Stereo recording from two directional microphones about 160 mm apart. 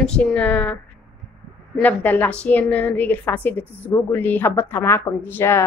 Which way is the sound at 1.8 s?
10° left (ahead or behind).